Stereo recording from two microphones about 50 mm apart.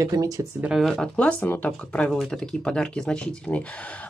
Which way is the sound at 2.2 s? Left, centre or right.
Centre.